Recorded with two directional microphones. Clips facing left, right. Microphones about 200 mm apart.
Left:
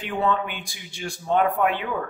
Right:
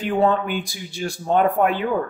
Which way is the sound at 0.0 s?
40° right (ahead or behind).